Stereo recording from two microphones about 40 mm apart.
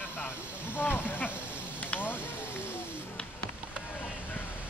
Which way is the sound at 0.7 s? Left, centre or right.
Left.